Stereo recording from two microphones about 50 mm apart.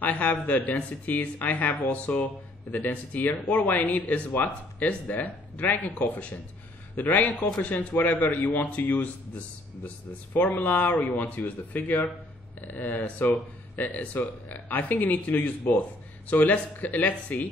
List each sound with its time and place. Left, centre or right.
0.0 s speech: left